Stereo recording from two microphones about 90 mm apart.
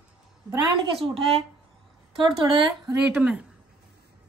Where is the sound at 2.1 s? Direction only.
75° right (ahead or behind).